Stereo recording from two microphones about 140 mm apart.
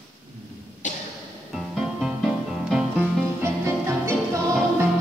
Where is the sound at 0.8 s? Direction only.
60° left (ahead or behind).